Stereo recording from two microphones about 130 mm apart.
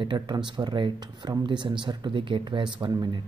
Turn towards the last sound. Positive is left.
turn(degrees=-35)  # may be behind; listen again after turning